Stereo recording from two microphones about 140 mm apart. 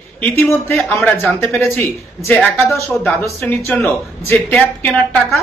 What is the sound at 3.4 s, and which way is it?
Speech, 10° left (ahead or behind).